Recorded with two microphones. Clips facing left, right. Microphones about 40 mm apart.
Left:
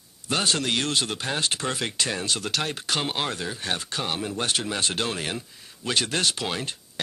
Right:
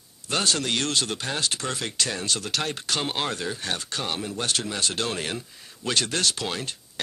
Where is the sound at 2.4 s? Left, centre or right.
Centre.